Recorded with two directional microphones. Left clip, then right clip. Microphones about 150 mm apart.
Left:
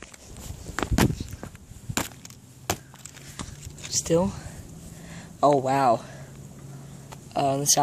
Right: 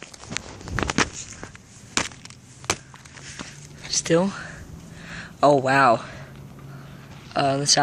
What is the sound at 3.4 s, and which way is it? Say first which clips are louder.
Whispering: right 1 dB; 25° left (ahead or behind).